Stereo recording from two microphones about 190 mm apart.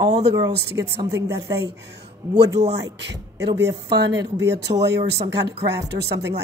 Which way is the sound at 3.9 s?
65° right (ahead or behind).